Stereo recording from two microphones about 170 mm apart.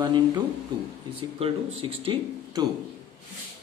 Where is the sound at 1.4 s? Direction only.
35° right (ahead or behind).